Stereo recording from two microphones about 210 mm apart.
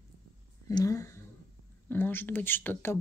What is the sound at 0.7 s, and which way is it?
Speech, 15° left (ahead or behind).